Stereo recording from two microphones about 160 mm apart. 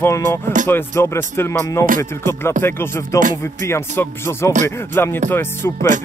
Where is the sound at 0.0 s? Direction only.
15° left (ahead or behind).